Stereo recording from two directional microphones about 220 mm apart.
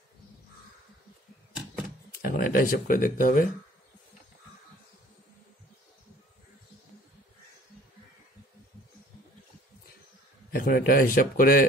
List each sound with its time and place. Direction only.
2.2 s speech: 40° left (ahead or behind)
10.5 s speech: 40° left (ahead or behind)